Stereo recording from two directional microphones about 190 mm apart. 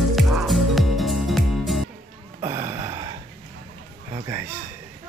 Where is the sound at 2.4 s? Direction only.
15° right (ahead or behind).